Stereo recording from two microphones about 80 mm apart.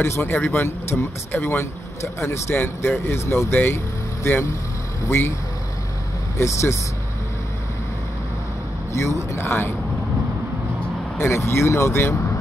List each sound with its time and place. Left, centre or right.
0.0 s speech: left
2.5 s speech: left
6.3 s speech: left
8.9 s speech: left
11.1 s speech: left